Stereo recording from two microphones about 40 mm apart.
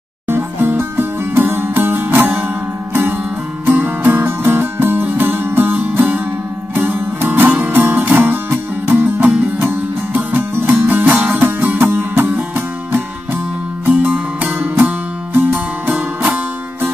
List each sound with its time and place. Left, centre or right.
0.3 s music: right
3.6 s music: right
11.4 s music: right
14.0 s music: right
15.3 s music: right